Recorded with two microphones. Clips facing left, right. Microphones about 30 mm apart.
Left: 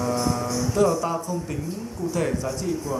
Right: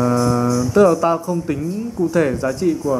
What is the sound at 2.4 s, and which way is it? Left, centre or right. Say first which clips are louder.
Speech: right 9 dB; right.